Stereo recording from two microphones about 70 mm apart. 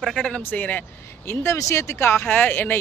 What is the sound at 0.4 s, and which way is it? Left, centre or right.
Speech, left.